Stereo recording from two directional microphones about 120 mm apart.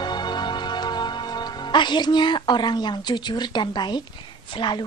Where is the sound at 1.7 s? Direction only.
40° left (ahead or behind).